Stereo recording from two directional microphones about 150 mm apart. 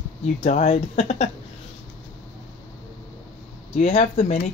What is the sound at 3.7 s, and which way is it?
Speech, 45° left (ahead or behind).